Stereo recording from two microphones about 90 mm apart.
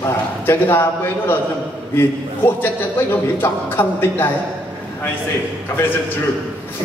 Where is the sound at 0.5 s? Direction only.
25° left (ahead or behind).